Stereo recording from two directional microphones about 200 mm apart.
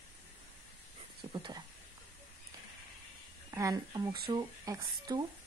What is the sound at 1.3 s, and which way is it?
Speech, 20° right (ahead or behind).